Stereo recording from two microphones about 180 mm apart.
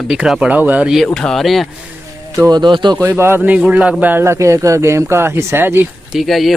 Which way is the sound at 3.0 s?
15° right (ahead or behind).